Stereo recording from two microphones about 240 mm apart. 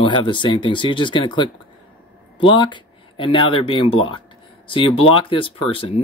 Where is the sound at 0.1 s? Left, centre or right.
Left.